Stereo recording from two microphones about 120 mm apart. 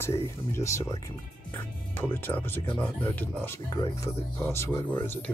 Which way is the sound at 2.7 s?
15° left (ahead or behind).